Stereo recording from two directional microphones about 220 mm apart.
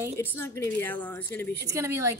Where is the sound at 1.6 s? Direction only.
10° right (ahead or behind).